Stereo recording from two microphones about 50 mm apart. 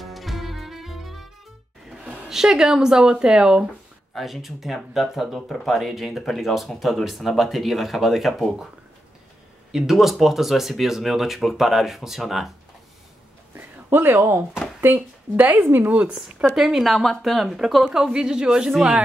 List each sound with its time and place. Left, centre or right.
0.0 s music: centre
2.2 s speech: centre
4.1 s speech: centre
9.7 s speech: centre
13.8 s speech: right
14.8 s speech: right
15.9 s speech: centre
16.5 s speech: centre